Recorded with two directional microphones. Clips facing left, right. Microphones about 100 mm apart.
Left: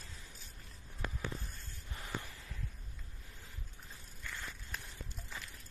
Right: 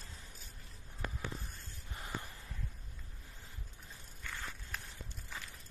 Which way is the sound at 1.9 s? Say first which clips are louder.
Even; 25° right (ahead or behind).